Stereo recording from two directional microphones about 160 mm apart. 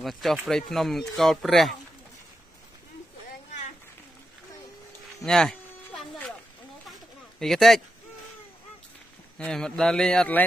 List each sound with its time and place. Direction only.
0.0 s speech: centre (ahead or behind)
5.2 s a sound: 5° left (ahead or behind)
7.3 s speech: centre (ahead or behind)
9.4 s speech: 5° left (ahead or behind)